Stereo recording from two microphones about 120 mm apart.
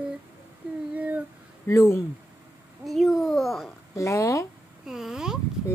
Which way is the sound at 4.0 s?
25° left (ahead or behind).